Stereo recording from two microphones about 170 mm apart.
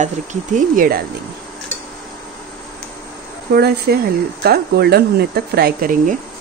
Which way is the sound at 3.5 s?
70° right (ahead or behind).